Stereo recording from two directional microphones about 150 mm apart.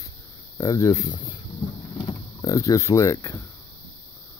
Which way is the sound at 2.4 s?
20° left (ahead or behind).